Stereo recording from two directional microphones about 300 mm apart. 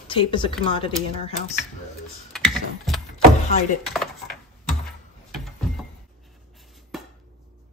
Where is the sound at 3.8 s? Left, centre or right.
Centre.